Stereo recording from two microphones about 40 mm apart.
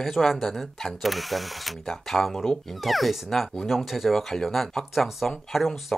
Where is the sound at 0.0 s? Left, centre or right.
Centre.